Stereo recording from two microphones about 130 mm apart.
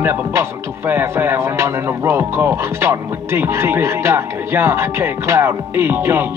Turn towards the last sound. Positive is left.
turn(degrees=-20)  # may be behind; listen again after turning